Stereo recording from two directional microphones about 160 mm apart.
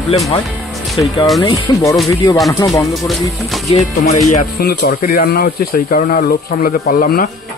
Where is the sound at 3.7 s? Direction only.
45° left (ahead or behind).